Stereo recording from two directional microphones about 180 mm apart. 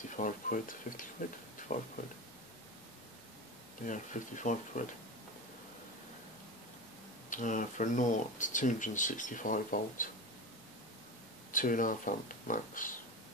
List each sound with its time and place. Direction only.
0.1 s speech: 50° left (ahead or behind)
3.8 s speech: 45° left (ahead or behind)
7.2 s speech: 45° left (ahead or behind)
11.5 s speech: 50° left (ahead or behind)